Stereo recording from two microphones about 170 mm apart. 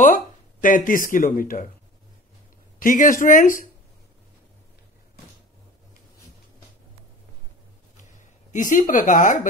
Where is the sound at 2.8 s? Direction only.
50° left (ahead or behind).